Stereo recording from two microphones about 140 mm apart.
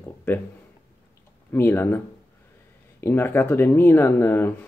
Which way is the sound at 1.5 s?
15° left (ahead or behind).